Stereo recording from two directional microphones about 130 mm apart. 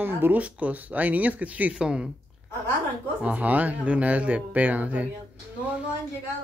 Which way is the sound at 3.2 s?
10° right (ahead or behind).